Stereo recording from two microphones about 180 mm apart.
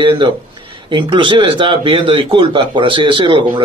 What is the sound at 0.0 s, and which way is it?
Speech, 30° right (ahead or behind).